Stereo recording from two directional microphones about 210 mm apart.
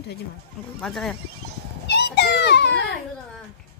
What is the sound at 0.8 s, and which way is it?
Speech, centre (ahead or behind).